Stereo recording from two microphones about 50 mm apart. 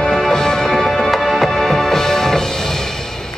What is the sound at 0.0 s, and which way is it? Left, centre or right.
Music, centre.